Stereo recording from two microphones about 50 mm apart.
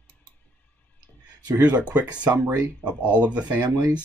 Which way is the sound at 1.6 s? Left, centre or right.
Right.